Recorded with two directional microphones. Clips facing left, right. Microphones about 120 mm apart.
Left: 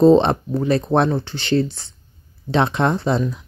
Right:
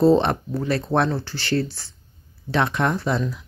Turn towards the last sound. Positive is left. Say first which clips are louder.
# left 4 dB
turn(degrees=25)  # may be behind; listen again after turning